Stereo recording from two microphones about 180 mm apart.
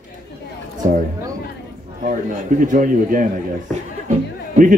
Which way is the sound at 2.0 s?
50° right (ahead or behind).